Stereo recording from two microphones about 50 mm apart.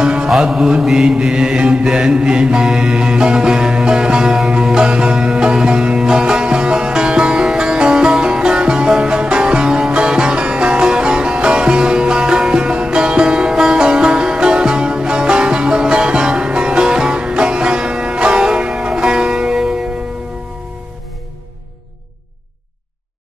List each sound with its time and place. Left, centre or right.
0.0 s mantra: centre